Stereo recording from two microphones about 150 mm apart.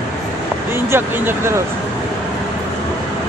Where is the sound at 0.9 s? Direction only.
15° right (ahead or behind).